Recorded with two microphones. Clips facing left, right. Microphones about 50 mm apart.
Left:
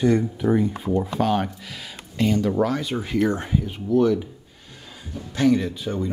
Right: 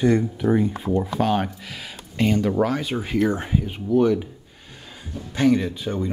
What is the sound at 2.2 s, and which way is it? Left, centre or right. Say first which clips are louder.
Speech: right 1 dB; right.